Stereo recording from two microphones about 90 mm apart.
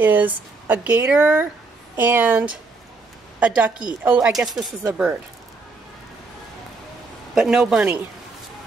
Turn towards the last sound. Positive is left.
turn(degrees=-5)  # may be behind; listen again after turning